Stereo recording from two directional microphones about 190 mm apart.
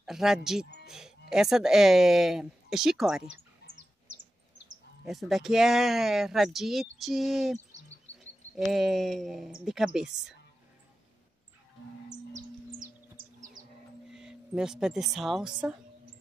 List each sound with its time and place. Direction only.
0.0 s speech: centre (ahead or behind)
5.0 s speech: centre (ahead or behind)
8.5 s speech: centre (ahead or behind)
12.3 s bird: 75° right (ahead or behind)
14.1 s speech: 5° right (ahead or behind)